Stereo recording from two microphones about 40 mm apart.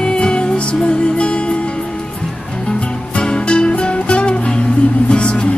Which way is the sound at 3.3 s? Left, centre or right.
Left.